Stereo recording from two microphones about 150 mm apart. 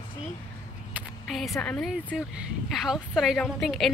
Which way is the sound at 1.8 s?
5° right (ahead or behind).